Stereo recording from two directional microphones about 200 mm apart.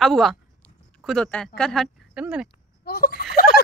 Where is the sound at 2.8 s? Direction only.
50° left (ahead or behind).